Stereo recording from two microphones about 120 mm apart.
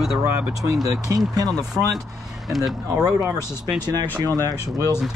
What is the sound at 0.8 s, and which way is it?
Speech, 30° right (ahead or behind).